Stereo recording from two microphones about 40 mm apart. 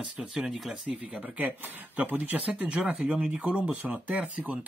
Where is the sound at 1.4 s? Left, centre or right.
Right.